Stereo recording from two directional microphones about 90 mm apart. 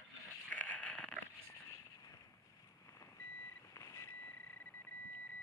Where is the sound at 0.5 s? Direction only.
15° left (ahead or behind).